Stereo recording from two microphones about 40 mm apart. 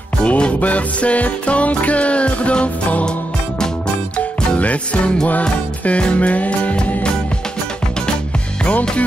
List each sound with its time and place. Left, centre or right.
0.2 s music: left
4.6 s music: left